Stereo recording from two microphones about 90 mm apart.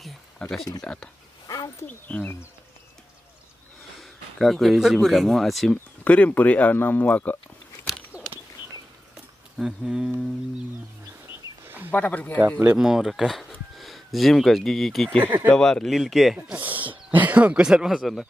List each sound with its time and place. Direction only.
0.4 s speech: 5° left (ahead or behind)
4.0 s speech: centre (ahead or behind)
6.0 s speech: 15° left (ahead or behind)
8.1 s a sound: 15° right (ahead or behind)
9.6 s speech: 5° right (ahead or behind)
11.2 s wild animals: 25° right (ahead or behind)
11.9 s speech: 15° left (ahead or behind)
12.7 s speech: 5° right (ahead or behind)
15.2 s speech: 20° right (ahead or behind)
15.5 s speech: 5° left (ahead or behind)
16.5 s a sound: 20° right (ahead or behind)
17.1 s speech: 20° right (ahead or behind); by 18.2 s centre (ahead or behind)